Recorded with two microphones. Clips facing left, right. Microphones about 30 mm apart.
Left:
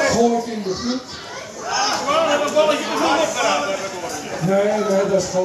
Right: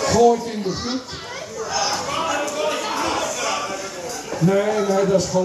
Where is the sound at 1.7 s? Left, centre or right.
Left.